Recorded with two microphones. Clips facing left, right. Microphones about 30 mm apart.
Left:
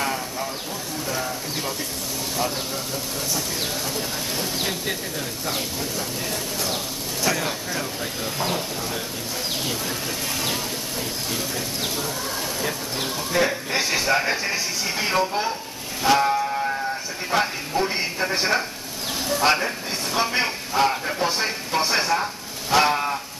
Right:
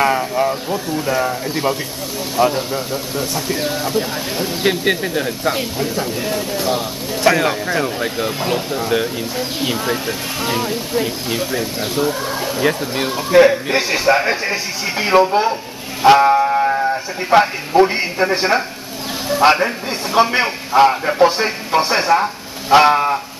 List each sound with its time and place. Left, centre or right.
0.0 s a man's voice: right
4.6 s speech: right
5.5 s a man's voice: right
7.2 s speech: right
8.4 s a man's voice: right
12.6 s speech: right
13.1 s a man's voice: right